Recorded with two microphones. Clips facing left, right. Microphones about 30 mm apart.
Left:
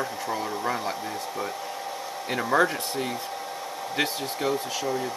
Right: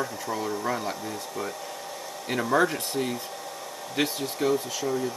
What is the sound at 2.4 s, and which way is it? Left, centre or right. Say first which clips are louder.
Speech: left 1 dB; centre.